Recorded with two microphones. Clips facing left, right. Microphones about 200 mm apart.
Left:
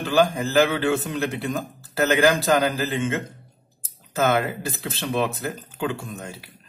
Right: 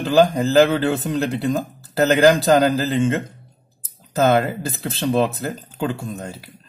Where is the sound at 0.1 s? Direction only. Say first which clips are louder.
Right 5 dB; 35° right (ahead or behind).